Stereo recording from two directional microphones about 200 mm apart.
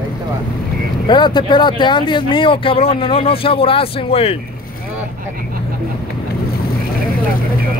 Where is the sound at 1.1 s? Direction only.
20° left (ahead or behind).